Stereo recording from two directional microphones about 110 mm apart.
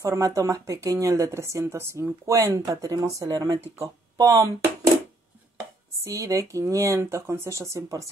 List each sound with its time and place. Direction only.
0.0 s a woman's voice: 30° right (ahead or behind)
6.0 s a woman's voice: 30° right (ahead or behind)